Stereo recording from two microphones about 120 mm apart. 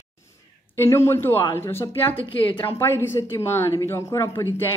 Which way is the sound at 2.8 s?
20° left (ahead or behind).